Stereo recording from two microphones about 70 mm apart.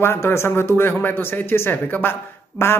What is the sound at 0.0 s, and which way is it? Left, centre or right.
A man's voice, left.